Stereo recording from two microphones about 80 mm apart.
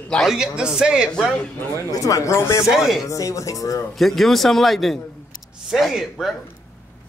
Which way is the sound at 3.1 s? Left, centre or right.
Left.